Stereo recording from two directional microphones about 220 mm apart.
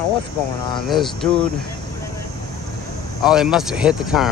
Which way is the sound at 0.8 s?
Centre (ahead or behind).